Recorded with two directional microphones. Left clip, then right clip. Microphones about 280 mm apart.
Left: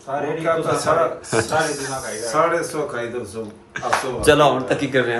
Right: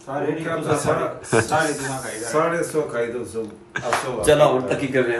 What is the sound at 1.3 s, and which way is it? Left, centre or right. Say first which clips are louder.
Speech: even; centre.